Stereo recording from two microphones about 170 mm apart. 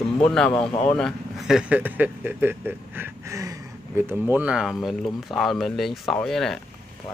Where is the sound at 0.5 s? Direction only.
30° left (ahead or behind).